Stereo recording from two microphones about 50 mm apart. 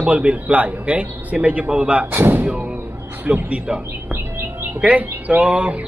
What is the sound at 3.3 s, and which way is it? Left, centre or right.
Speech, right.